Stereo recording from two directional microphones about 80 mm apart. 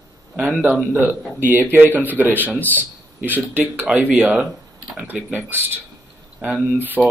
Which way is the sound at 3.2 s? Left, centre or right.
Right.